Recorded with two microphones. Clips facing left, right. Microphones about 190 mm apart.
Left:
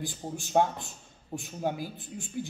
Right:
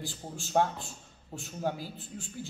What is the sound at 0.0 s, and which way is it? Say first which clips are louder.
A man's voice: left 4 dB; 15° left (ahead or behind).